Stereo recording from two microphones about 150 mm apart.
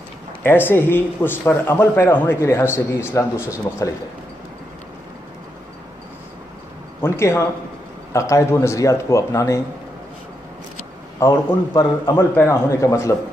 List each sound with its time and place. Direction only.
0.4 s speech: 15° left (ahead or behind)
7.0 s a man's voice: 20° left (ahead or behind)
11.1 s a man's voice: 25° left (ahead or behind)